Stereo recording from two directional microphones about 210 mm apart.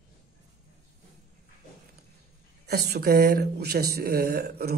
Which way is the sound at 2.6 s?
50° right (ahead or behind).